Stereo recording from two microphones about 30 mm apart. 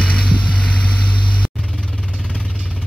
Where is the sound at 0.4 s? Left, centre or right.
Left.